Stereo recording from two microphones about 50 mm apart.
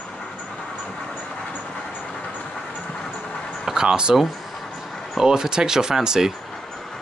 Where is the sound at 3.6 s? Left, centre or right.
Centre.